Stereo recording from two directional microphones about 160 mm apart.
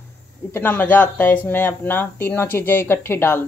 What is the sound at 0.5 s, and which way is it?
Speech, 15° left (ahead or behind).